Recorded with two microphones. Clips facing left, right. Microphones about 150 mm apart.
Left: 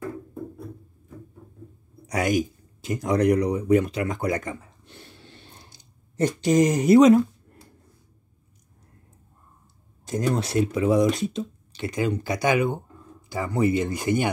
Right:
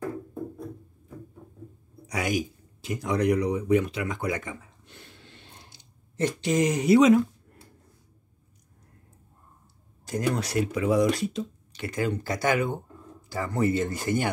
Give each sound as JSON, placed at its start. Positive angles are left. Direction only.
{"t": 2.0, "sound": "speech", "side_deg": 45}
{"t": 10.0, "sound": "speech", "side_deg": 25}